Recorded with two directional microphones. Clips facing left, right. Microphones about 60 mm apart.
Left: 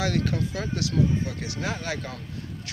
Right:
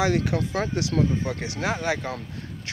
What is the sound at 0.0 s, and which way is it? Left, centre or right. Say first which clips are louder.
Speech: right 3 dB; right.